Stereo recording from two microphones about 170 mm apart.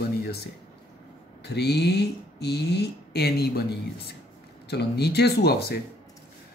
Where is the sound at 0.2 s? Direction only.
70° left (ahead or behind).